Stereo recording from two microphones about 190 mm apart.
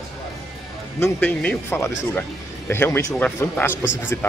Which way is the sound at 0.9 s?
10° left (ahead or behind).